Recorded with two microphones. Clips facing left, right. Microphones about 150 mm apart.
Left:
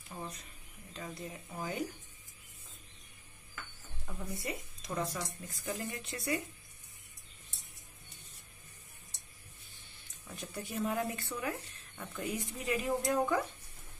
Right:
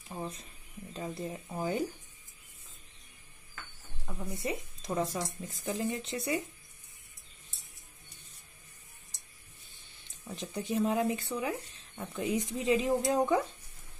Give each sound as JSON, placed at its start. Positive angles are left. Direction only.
{"t": 0.1, "sound": "a sound", "side_deg": -30}
{"t": 0.9, "sound": "speech", "side_deg": -30}
{"t": 4.0, "sound": "speech", "side_deg": -10}
{"t": 4.4, "sound": "speech", "side_deg": -25}
{"t": 10.2, "sound": "speech", "side_deg": -25}